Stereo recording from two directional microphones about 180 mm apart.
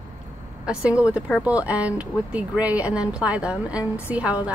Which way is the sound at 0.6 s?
5° right (ahead or behind).